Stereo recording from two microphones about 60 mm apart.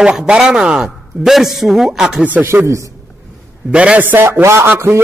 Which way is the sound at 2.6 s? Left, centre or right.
Right.